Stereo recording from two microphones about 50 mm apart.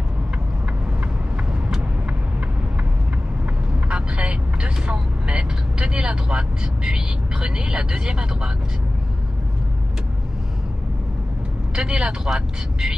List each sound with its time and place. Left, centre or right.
1.5 s vehicle: centre
3.9 s vehicle: centre
11.7 s speech: centre